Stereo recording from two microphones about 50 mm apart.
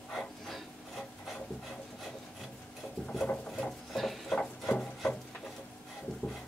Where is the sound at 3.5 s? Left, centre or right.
Centre.